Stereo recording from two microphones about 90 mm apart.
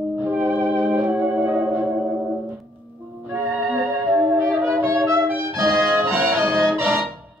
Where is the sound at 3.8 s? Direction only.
25° right (ahead or behind).